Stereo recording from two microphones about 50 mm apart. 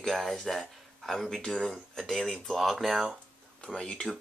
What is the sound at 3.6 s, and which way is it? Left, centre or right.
Speech, centre.